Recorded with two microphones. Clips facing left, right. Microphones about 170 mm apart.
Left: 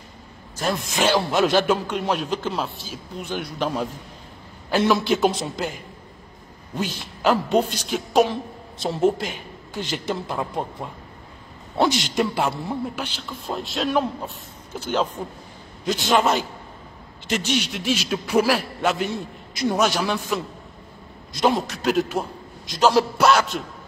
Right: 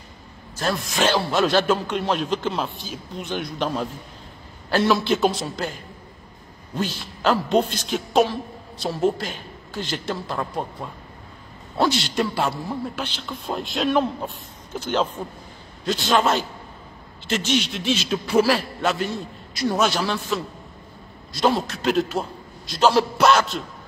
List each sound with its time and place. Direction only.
0.7 s a man's voice: 20° left (ahead or behind)
4.9 s a man's voice: 15° left (ahead or behind)
11.7 s a man's voice: 20° left (ahead or behind)
17.3 s a man's voice: 10° left (ahead or behind)